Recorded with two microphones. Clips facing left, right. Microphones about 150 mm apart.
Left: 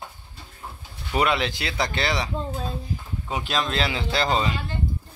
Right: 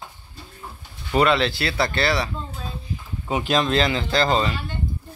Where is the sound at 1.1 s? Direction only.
10° left (ahead or behind).